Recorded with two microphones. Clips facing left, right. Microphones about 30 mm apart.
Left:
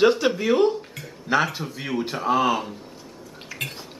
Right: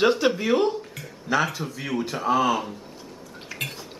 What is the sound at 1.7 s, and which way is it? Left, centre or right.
Speech, centre.